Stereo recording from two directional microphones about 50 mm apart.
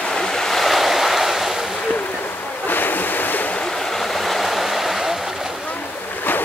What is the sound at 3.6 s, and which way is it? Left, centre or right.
Stream, centre.